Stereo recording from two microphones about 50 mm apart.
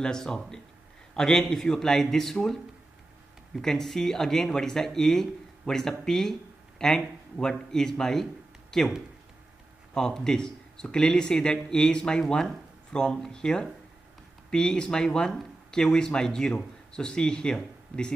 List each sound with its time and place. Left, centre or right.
0.0 s a man's voice: centre
3.5 s speech: centre
9.9 s speech: centre